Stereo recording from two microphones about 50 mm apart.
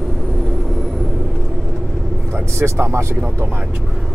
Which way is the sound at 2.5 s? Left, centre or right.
Right.